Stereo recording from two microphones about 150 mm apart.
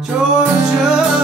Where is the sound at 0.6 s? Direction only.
5° right (ahead or behind).